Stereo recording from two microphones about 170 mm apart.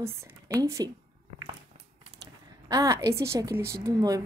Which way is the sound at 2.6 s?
20° right (ahead or behind).